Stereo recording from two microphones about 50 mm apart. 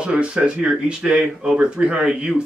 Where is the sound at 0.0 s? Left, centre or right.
Right.